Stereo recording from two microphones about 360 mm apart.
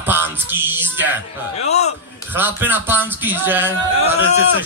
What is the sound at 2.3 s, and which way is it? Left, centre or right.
A man's voice, centre.